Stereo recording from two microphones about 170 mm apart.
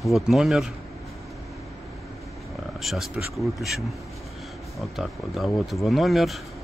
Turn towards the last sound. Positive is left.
turn(degrees=0)  # may be behind; listen again after turning